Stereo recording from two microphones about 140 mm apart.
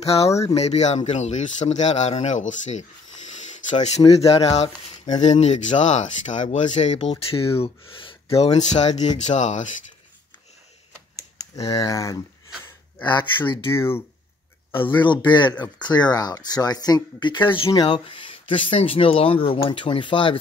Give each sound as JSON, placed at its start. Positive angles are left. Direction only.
{"t": 0.0, "sound": "speech", "side_deg": 45}
{"t": 3.3, "sound": "a sound", "side_deg": 60}
{"t": 4.1, "sound": "speech", "side_deg": 45}
{"t": 5.1, "sound": "speech", "side_deg": 55}
{"t": 11.1, "sound": "speech", "side_deg": 25}
{"t": 13.0, "sound": "speech", "side_deg": 35}
{"t": 13.7, "sound": "speech", "side_deg": 15}
{"t": 14.7, "sound": "speech", "side_deg": 35}